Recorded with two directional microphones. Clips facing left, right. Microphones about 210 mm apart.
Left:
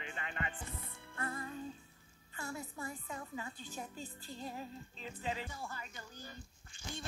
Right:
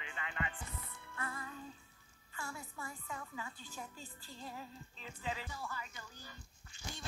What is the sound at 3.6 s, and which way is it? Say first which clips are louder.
Music: left 4 dB; 20° left (ahead or behind).